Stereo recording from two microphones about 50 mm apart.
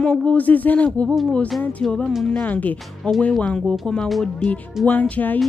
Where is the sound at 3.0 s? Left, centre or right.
Left.